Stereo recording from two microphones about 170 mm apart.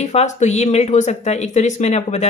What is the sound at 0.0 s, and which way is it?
Speech, 40° left (ahead or behind).